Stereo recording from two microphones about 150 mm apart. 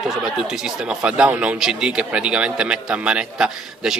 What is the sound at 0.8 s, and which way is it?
Speech, 5° right (ahead or behind).